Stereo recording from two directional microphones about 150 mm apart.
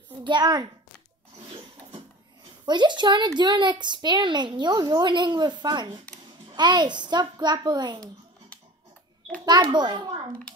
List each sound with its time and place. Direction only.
0.2 s a child's voice: 30° right (ahead or behind)
2.6 s a woman's voice: 30° right (ahead or behind)
9.5 s a woman's voice: 30° right (ahead or behind)